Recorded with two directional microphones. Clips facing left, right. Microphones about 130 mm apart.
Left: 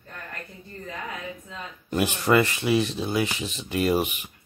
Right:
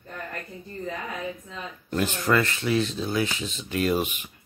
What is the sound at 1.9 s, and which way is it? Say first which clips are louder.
Speech: left 2 dB; 15° left (ahead or behind).